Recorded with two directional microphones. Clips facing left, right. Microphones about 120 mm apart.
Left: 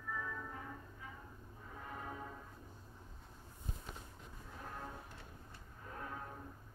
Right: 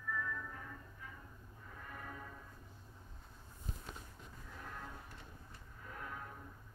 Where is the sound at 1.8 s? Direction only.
20° left (ahead or behind).